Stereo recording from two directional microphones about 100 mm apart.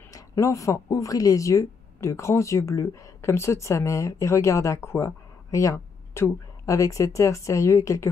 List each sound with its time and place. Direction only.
0.1 s speech: 35° left (ahead or behind)